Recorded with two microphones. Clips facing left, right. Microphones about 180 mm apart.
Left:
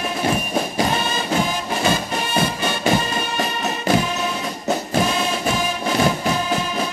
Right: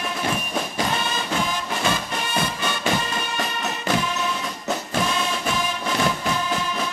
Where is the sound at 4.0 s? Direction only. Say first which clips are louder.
Left 3 dB; 10° left (ahead or behind).